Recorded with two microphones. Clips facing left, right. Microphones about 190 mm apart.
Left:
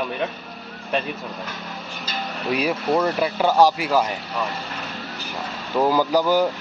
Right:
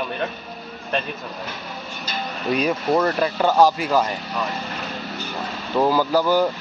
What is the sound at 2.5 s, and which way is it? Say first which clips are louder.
Speech: right 1 dB; 10° left (ahead or behind).